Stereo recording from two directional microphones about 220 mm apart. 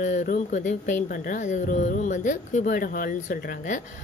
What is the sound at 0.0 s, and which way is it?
Speech, 35° left (ahead or behind).